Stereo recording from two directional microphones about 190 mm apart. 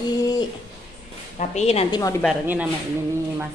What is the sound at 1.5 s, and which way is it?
Speech, 35° left (ahead or behind).